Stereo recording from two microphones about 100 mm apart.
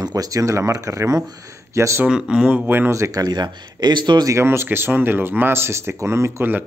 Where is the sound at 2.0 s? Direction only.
10° right (ahead or behind); by 4.3 s 50° right (ahead or behind).